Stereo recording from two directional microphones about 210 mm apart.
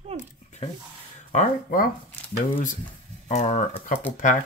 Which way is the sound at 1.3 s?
45° left (ahead or behind).